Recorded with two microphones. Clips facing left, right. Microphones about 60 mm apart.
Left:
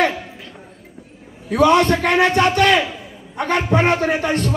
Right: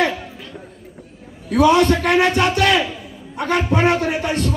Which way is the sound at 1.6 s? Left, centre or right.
Left.